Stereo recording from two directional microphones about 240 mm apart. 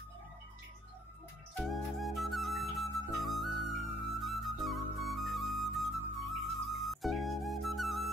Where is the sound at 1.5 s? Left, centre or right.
Centre.